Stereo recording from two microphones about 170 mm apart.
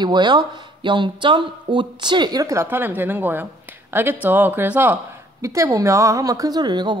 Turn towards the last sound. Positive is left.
turn(degrees=-25)  # may be behind; listen again after turning